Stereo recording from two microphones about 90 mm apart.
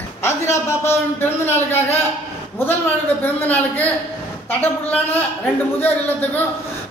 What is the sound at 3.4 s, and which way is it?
A man's voice, 20° left (ahead or behind).